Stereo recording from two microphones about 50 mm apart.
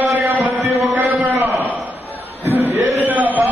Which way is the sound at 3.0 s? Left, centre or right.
Right.